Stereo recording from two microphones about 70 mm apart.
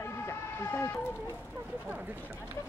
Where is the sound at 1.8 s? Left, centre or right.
Right.